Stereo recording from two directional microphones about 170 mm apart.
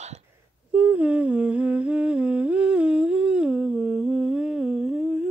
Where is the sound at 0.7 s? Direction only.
10° right (ahead or behind).